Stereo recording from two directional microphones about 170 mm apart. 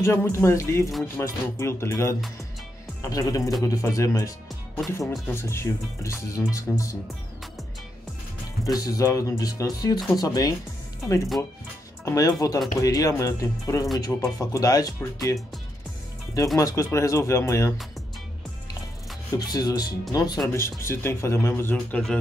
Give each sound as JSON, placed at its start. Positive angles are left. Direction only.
{"t": 0.0, "sound": "speech", "side_deg": 15}
{"t": 5.3, "sound": "speech", "side_deg": 15}
{"t": 8.6, "sound": "speech", "side_deg": 20}
{"t": 12.0, "sound": "speech", "side_deg": 20}
{"t": 16.5, "sound": "speech", "side_deg": 20}
{"t": 19.3, "sound": "speech", "side_deg": 20}